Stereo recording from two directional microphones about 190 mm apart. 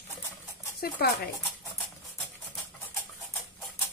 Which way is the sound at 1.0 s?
55° left (ahead or behind).